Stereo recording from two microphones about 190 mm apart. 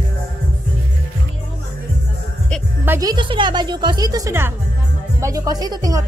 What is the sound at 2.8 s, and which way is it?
A woman's voice, 15° right (ahead or behind).